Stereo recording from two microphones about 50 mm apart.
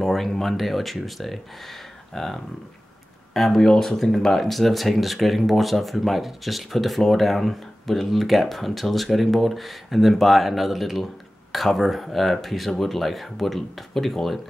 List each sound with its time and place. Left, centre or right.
0.0 s speech: centre